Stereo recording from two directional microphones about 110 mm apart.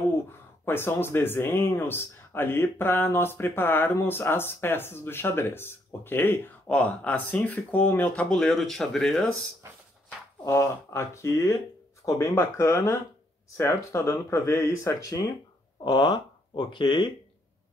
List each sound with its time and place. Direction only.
0.7 s speech: 20° left (ahead or behind); by 9.3 s 5° left (ahead or behind)
10.4 s speech: 30° left (ahead or behind)
15.8 s speech: 45° left (ahead or behind)